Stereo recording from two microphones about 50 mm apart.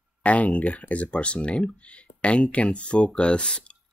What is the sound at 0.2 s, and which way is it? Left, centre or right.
Speech, left.